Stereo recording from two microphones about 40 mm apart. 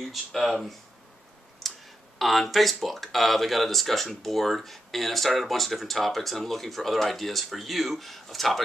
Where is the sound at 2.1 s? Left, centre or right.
Centre.